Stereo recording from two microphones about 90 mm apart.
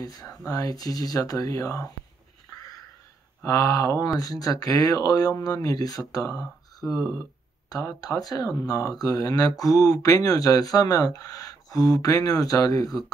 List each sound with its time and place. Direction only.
0.0 s speech: 45° left (ahead or behind)
3.4 s speech: 40° left (ahead or behind)